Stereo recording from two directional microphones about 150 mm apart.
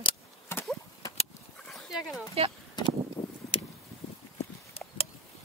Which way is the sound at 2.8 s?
30° left (ahead or behind).